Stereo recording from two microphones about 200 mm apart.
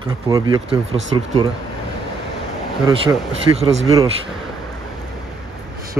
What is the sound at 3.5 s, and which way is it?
Speech, 30° right (ahead or behind).